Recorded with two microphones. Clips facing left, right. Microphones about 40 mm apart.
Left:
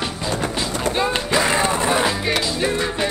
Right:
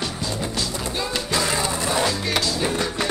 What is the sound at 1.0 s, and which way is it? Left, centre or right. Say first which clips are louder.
Music: left 5 dB; left.